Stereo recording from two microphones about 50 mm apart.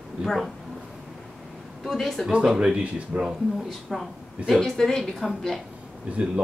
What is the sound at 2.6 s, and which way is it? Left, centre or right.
Speech, right.